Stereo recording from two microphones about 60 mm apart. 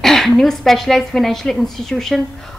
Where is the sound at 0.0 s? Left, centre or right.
Centre.